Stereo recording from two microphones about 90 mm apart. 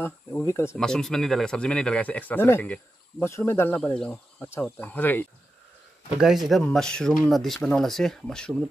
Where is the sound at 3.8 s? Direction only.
15° left (ahead or behind).